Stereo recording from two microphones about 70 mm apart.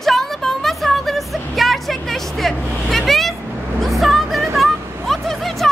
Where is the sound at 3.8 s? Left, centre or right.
Centre.